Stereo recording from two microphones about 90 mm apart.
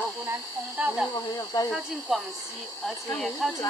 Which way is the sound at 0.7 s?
10° right (ahead or behind).